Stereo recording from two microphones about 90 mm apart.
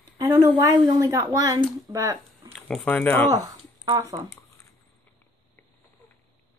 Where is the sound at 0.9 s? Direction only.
40° right (ahead or behind).